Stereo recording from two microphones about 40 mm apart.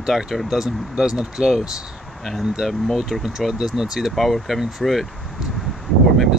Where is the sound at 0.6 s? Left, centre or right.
Centre.